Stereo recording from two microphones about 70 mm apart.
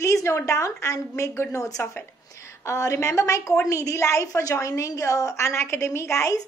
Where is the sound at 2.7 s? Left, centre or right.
Left.